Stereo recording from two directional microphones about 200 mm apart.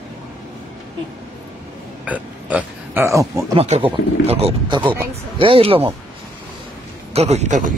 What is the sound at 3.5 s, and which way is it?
Speech, 30° right (ahead or behind).